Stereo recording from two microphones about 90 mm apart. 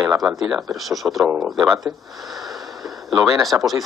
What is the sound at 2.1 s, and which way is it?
Sniff, centre (ahead or behind).